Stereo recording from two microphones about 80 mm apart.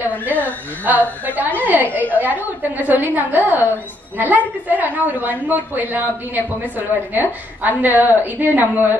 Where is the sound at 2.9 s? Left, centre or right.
Right.